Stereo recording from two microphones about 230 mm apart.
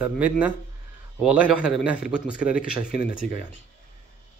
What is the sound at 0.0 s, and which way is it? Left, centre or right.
Speech, centre.